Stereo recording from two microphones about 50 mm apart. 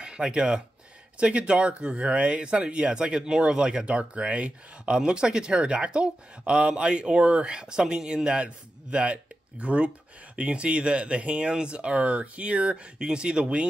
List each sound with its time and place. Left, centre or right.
0.0 s speech: centre